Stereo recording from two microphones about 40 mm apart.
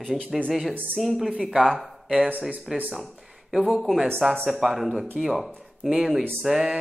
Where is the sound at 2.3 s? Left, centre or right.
Right.